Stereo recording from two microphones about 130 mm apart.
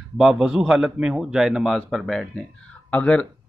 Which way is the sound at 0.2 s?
5° right (ahead or behind).